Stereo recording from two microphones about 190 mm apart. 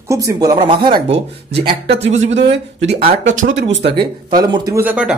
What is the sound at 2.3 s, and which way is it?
Speech, 70° right (ahead or behind).